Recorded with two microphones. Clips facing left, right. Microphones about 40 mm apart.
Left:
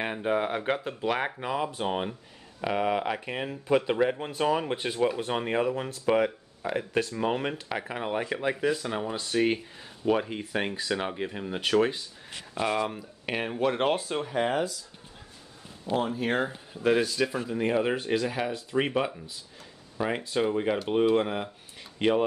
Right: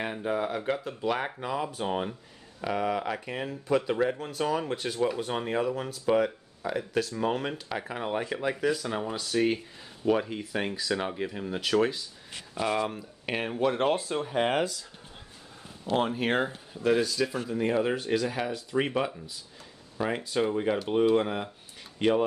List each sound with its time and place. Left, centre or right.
0.0 s speech: left
1.2 s speech: left
7.8 s speech: centre
12.7 s speech: centre
14.2 s speech: centre
14.5 s speech: right
15.9 s speech: right
16.8 s speech: left
17.3 s speech: centre
21.9 s tick-tock: centre